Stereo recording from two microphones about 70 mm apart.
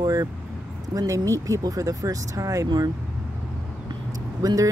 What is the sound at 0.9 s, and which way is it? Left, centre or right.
Speech, right.